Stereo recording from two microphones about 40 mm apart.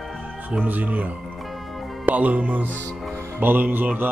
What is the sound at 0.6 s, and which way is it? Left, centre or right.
A man's voice, right.